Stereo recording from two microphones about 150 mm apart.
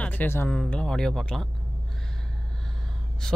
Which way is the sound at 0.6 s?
Centre (ahead or behind).